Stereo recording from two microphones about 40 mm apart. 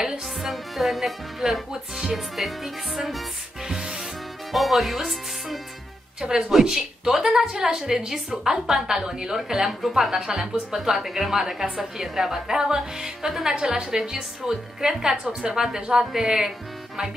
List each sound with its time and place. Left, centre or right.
0.0 s music: centre
0.5 s music: centre
3.6 s music: centre
4.5 s music: centre
6.5 s a woman's voice: centre
9.4 s a woman's voice: centre